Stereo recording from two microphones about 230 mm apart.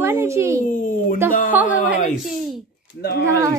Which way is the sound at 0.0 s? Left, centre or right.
Centre.